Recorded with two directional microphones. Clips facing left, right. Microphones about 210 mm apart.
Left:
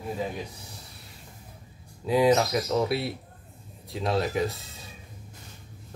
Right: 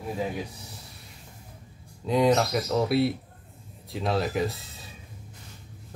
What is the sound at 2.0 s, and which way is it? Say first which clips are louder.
Speech: left 1 dB; 5° left (ahead or behind).